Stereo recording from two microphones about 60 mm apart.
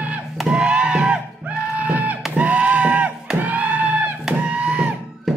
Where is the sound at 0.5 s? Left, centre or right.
Centre.